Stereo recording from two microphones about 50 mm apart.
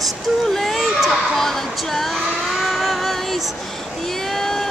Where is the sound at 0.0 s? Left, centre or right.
Centre.